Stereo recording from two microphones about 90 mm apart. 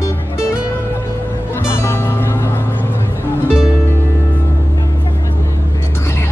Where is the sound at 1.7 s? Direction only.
25° left (ahead or behind).